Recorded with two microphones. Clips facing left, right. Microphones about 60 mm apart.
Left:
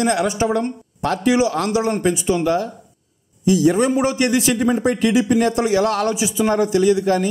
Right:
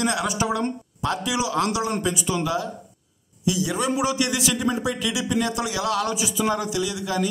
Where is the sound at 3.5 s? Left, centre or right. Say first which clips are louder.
Left 8 dB; left.